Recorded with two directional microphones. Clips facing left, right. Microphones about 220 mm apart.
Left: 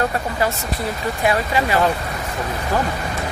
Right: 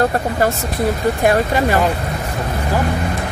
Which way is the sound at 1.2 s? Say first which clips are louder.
Right 3 dB; 50° right (ahead or behind).